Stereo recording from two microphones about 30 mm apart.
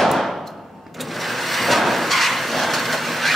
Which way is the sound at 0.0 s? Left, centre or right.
Centre.